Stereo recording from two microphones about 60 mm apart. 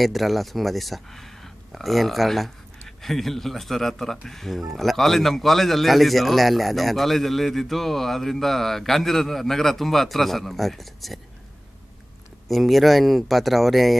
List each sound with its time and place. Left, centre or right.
0.0 s a man's voice: centre
12.4 s a man's voice: centre